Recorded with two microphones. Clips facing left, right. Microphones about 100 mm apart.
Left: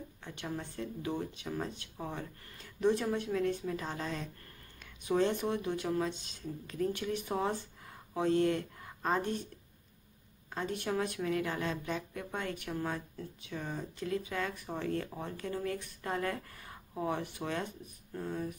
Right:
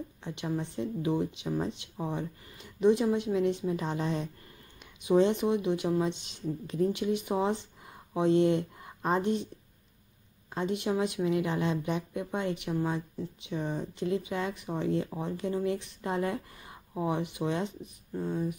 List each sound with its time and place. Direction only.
0.2 s speech: 20° right (ahead or behind)
5.0 s speech: 15° right (ahead or behind)
10.8 s speech: 15° right (ahead or behind)